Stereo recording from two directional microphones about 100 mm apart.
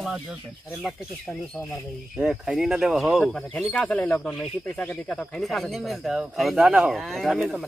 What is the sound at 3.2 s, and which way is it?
Speech, 10° left (ahead or behind).